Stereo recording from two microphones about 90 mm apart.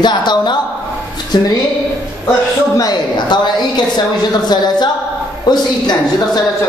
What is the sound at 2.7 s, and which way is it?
Speech, 50° left (ahead or behind).